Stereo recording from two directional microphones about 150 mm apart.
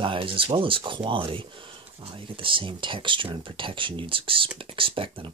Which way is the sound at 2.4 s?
35° right (ahead or behind).